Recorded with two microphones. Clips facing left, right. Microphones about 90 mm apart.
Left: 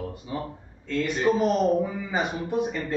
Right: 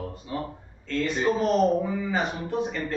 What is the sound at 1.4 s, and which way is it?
Speech, 15° left (ahead or behind).